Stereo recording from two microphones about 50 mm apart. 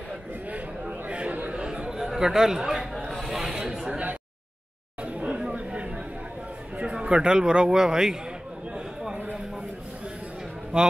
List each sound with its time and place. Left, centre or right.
0.5 s chatter: right; by 3.0 s centre
3.1 s a sound: centre
5.0 s chatter: right
6.8 s a man's voice: right
10.7 s speech: right